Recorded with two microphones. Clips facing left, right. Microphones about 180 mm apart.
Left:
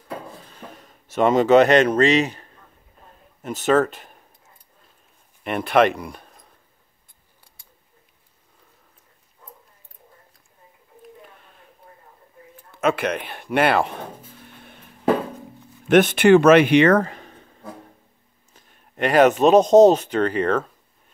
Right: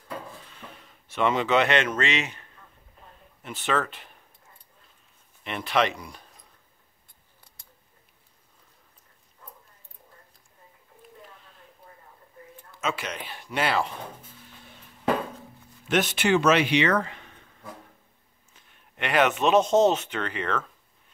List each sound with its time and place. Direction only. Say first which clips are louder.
0.4 s a sound: left 5 dB; 40° left (ahead or behind)
3.4 s speech: left 9 dB; 40° left (ahead or behind)
5.4 s speech: left 8 dB; 50° left (ahead or behind)
12.8 s speech: left 10 dB; 60° left (ahead or behind)
14.4 s music: left 5 dB; 60° left (ahead or behind)
15.9 s a man's voice: left 10 dB; 55° left (ahead or behind)